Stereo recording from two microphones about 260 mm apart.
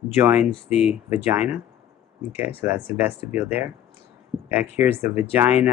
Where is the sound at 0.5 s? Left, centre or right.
Left.